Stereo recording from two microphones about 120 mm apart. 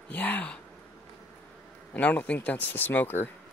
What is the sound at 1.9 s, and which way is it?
Speech, 15° left (ahead or behind).